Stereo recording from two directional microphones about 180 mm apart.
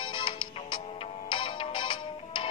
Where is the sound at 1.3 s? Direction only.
25° left (ahead or behind).